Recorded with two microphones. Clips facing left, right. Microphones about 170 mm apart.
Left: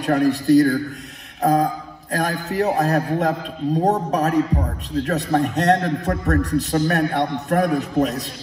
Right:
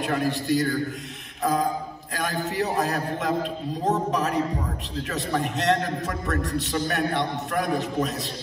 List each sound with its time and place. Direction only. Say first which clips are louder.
0.0 s a man's voice: left 7 dB; 40° left (ahead or behind)